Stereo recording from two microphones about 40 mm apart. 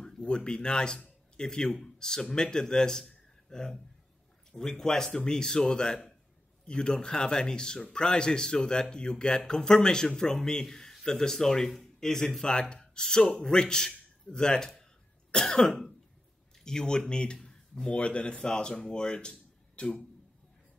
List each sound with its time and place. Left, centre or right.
0.0 s a man's voice: centre
12.4 s speech: left
17.9 s speech: left
19.7 s a sound: left